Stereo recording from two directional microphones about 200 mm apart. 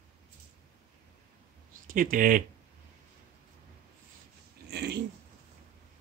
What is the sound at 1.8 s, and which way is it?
Speech, 45° right (ahead or behind).